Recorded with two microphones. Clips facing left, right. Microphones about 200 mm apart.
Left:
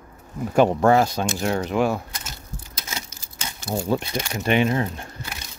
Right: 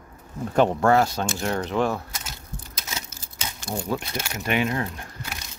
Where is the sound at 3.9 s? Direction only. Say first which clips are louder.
Left 4 dB; 30° left (ahead or behind).